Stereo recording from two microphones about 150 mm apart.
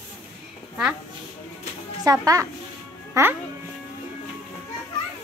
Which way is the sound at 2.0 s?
20° right (ahead or behind).